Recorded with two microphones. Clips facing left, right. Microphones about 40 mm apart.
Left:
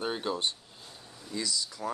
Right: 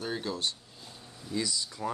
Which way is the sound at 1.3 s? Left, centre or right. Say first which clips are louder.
Right 1 dB; centre.